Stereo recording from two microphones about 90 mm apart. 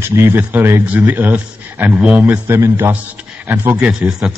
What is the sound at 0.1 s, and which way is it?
A man's voice, 25° right (ahead or behind).